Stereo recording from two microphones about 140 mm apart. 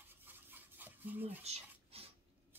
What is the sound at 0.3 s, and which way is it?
Toothbrush, 15° right (ahead or behind).